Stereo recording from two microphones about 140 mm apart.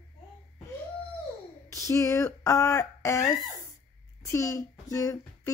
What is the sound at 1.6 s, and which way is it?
Speech, 20° left (ahead or behind).